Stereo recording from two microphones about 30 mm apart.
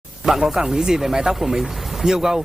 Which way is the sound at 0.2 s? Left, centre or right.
Centre.